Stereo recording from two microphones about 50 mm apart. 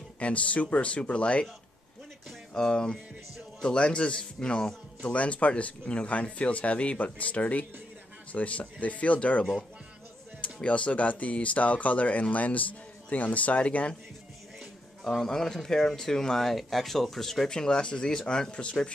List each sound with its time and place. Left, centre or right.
0.2 s speech: left
2.5 s speech: centre
15.2 s speech: centre